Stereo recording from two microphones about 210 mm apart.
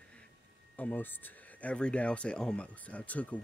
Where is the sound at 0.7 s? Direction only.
10° left (ahead or behind).